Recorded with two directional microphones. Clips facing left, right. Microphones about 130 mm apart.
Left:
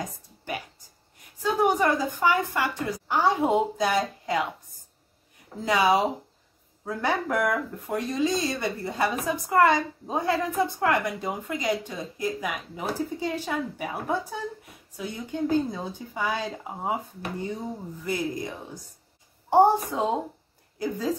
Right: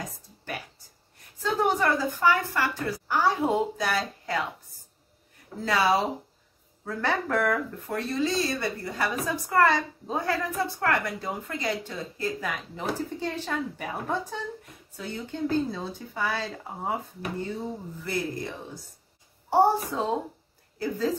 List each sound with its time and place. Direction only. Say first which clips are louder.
1.4 s speech: left 2 dB; 15° left (ahead or behind)
5.7 s speech: left 2 dB; 15° left (ahead or behind)
19.5 s speech: left 3 dB; 20° left (ahead or behind)